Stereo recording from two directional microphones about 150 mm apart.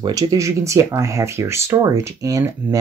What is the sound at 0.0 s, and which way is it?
Speech, 25° right (ahead or behind).